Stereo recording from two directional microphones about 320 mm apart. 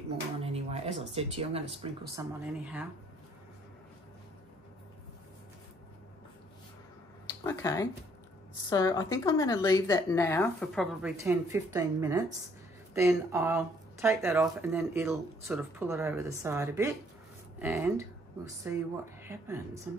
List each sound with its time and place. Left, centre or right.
0.5 s speech: centre
2.4 s speech: centre
7.4 s a woman's voice: centre